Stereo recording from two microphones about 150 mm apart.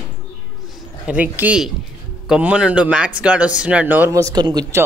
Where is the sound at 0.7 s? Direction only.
10° right (ahead or behind).